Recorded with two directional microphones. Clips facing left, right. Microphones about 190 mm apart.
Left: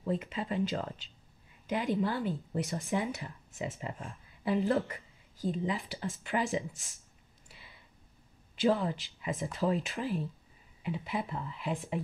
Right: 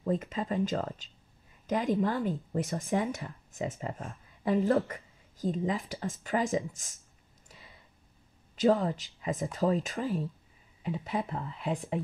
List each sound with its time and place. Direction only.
0.0 s speech: 45° right (ahead or behind)
4.1 s a woman's voice: 50° right (ahead or behind)
7.4 s a sound: 40° right (ahead or behind)
8.5 s speech: 40° right (ahead or behind)